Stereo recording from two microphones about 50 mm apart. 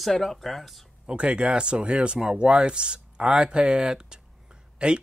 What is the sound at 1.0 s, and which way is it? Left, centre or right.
Speech, right.